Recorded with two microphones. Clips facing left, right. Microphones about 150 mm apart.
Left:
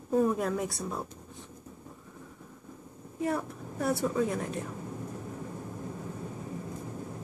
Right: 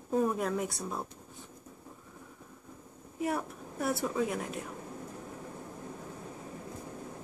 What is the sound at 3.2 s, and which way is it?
A woman's voice, 10° right (ahead or behind).